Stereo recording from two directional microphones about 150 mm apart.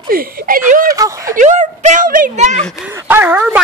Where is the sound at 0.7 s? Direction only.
70° right (ahead or behind).